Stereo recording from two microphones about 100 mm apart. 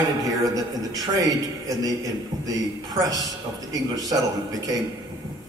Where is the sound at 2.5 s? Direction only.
40° right (ahead or behind).